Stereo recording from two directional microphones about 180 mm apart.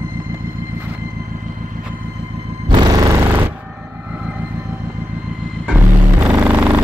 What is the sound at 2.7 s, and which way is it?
Music, 20° right (ahead or behind).